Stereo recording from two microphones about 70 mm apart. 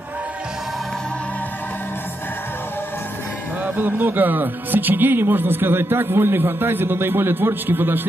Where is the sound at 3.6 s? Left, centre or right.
Right.